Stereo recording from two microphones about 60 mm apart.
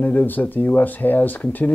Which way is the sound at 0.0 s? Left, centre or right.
Left.